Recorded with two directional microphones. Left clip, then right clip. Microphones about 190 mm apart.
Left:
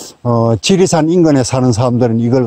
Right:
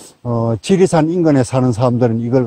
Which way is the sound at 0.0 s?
20° left (ahead or behind).